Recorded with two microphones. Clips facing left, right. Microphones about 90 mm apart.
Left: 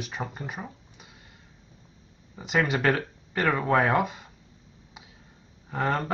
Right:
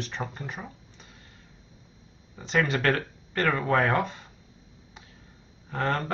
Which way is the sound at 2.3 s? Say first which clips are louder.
Even; 10° left (ahead or behind).